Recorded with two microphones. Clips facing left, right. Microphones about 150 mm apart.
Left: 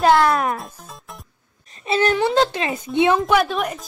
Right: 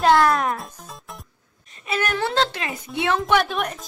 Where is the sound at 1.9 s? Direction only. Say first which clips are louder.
Left 7 dB; 30° left (ahead or behind).